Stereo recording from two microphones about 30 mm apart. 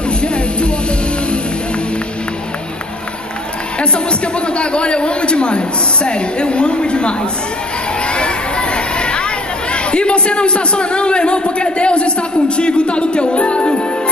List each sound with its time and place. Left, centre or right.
0.2 s music: left
3.8 s a man's voice: left